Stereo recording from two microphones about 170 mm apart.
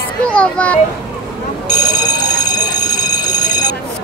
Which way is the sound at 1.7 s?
25° left (ahead or behind).